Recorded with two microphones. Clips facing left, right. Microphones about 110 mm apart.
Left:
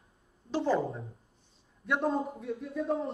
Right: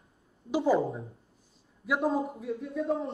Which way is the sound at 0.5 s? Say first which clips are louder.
Right 3 dB; 10° right (ahead or behind).